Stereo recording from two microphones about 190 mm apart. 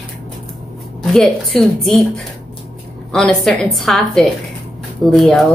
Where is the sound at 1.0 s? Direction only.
Centre (ahead or behind).